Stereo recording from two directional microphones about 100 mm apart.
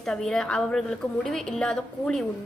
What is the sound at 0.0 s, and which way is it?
A woman's voice, 5° left (ahead or behind).